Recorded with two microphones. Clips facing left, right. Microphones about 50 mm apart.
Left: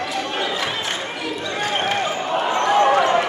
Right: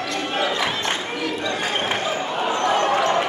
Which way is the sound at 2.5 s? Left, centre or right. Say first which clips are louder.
Left 4 dB; centre.